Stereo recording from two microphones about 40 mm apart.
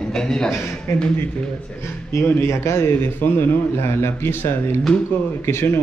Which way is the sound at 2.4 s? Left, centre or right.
Left.